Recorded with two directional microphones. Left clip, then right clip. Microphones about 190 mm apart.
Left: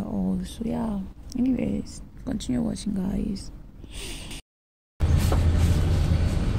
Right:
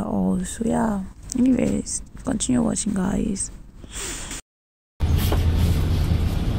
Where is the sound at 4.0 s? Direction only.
15° right (ahead or behind).